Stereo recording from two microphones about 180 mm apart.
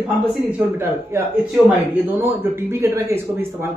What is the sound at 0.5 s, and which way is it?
A man's voice, 10° right (ahead or behind).